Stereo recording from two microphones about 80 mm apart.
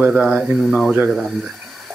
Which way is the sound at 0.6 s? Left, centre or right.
Centre.